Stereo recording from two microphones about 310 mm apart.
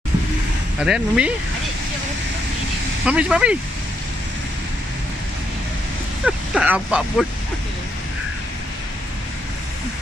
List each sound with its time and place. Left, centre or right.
0.8 s speech: centre
3.1 s speech: centre
6.2 s speech: centre